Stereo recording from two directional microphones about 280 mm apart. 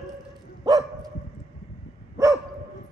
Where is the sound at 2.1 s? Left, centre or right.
Centre.